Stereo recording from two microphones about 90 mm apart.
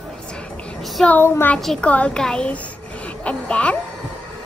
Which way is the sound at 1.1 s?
25° left (ahead or behind).